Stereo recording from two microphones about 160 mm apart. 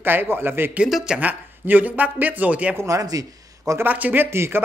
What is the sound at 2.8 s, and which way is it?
Speech, 20° right (ahead or behind).